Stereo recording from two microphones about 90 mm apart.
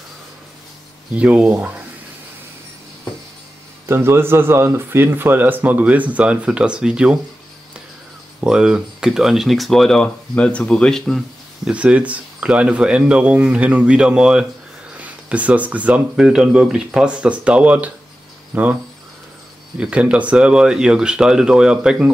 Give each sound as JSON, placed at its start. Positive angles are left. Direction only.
{"t": 1.1, "sound": "speech", "side_deg": -15}
{"t": 3.8, "sound": "a man's voice", "side_deg": -30}
{"t": 8.5, "sound": "speech", "side_deg": -10}
{"t": 11.7, "sound": "speech", "side_deg": -15}
{"t": 19.8, "sound": "speech", "side_deg": -15}